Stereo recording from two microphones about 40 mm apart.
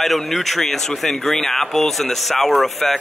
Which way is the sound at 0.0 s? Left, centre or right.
Centre.